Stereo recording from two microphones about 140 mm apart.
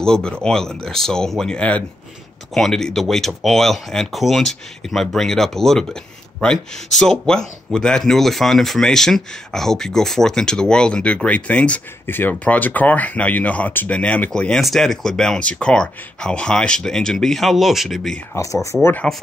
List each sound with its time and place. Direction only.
0.0 s speech: 5° left (ahead or behind)
18.3 s speech: 20° left (ahead or behind)